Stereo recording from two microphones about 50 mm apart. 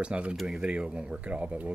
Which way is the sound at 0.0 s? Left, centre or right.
Right.